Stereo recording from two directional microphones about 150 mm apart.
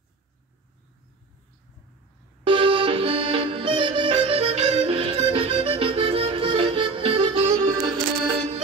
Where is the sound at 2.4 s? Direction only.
35° right (ahead or behind).